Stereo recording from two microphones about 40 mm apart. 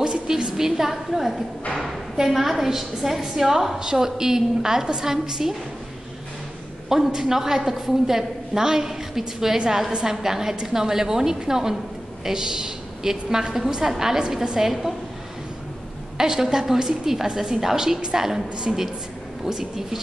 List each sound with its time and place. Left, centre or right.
0.0 s a sound: right
0.6 s a woman's voice: centre
6.9 s a woman's voice: centre
16.2 s a woman's voice: centre